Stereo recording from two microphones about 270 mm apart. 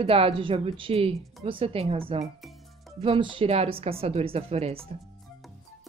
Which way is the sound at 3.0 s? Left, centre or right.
Centre.